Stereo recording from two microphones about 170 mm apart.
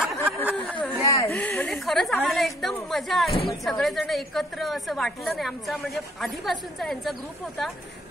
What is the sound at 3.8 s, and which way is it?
A woman's voice, centre (ahead or behind).